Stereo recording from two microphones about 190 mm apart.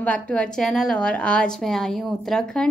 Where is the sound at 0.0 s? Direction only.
5° left (ahead or behind).